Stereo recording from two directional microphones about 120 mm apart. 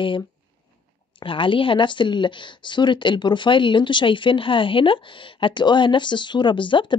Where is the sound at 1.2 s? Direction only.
45° left (ahead or behind).